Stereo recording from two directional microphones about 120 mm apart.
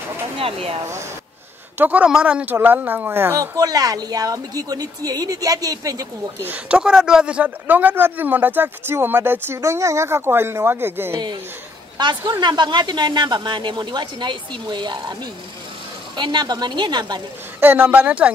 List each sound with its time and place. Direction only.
0.4 s speech: 50° right (ahead or behind)
1.8 s a woman's voice: 10° right (ahead or behind); by 6.0 s 30° right (ahead or behind)
6.4 s a man's voice: 10° right (ahead or behind)
12.3 s speech: 40° right (ahead or behind)
16.2 s speech: 40° right (ahead or behind)
17.6 s a man's voice: 15° right (ahead or behind)